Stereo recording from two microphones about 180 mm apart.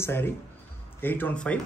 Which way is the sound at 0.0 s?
15° left (ahead or behind).